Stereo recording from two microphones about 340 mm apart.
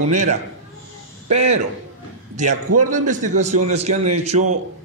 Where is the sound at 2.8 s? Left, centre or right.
Right.